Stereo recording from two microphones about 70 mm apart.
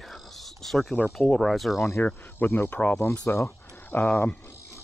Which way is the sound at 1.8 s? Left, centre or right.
Left.